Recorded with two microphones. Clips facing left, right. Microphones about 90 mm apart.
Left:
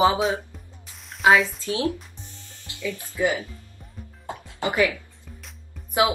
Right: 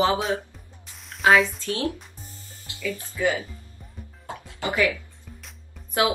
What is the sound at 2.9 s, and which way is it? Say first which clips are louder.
Speech: left 1 dB; 20° left (ahead or behind).